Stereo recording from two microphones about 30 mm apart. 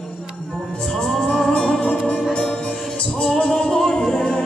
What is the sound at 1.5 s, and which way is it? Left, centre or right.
Music, left.